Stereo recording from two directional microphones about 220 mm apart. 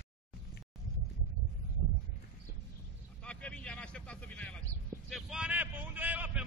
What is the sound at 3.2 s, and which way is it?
Vehicle, 5° left (ahead or behind).